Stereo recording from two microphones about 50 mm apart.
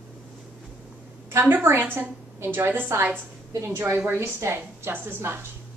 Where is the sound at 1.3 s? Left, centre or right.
Right.